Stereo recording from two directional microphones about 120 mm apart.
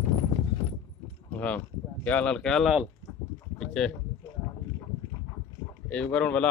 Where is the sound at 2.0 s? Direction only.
10° left (ahead or behind).